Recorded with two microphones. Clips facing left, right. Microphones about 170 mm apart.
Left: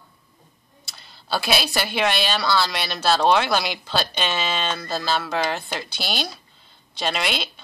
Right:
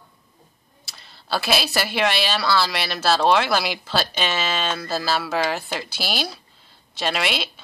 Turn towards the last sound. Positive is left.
turn(degrees=0)  # may be behind; listen again after turning